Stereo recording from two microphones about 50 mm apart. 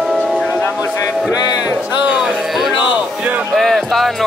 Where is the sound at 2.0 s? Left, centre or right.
Centre.